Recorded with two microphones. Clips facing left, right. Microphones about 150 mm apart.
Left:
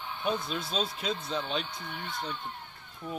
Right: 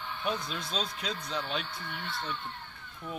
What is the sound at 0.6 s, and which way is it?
Speech, 5° left (ahead or behind).